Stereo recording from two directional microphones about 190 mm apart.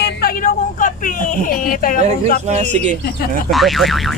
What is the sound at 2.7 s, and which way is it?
Speech, 40° right (ahead or behind).